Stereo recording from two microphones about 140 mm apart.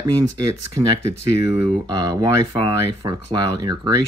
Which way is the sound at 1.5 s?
30° right (ahead or behind).